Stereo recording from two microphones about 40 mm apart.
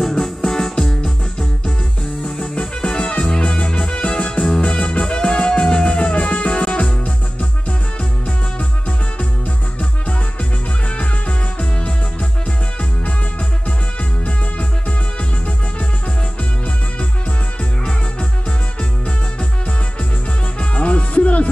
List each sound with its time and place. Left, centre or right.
0.0 s music: centre
2.5 s music: left
14.2 s music: left
20.5 s music: left